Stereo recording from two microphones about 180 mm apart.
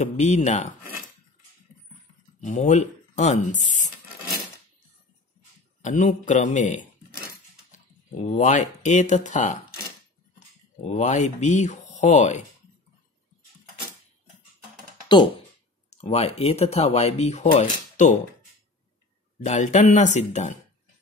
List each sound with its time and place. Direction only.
0.0 s speech: 40° left (ahead or behind)
2.4 s speech: 40° left (ahead or behind)
5.8 s a man's voice: 45° left (ahead or behind)
8.1 s speech: 40° left (ahead or behind)
10.8 s speech: 40° left (ahead or behind)
15.0 s speech: 25° left (ahead or behind)
15.9 s speech: 35° left (ahead or behind)
19.4 s speech: 40° left (ahead or behind)